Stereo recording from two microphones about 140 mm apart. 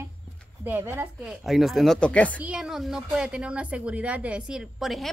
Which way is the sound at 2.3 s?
10° right (ahead or behind).